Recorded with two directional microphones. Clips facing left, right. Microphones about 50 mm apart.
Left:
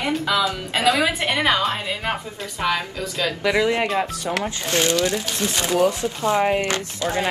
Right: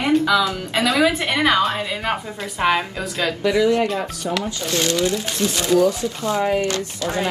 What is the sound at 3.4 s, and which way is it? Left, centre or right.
Speech, left.